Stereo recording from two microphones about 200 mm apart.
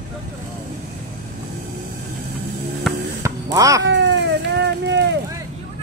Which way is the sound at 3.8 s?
65° right (ahead or behind).